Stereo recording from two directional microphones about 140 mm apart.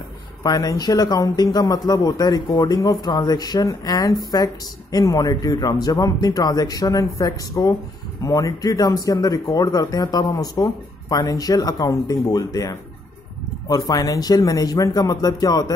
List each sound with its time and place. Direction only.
0.4 s speech: 25° left (ahead or behind)